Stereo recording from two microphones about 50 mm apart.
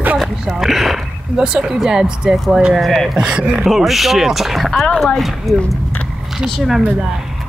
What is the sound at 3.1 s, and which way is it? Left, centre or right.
Speech, centre.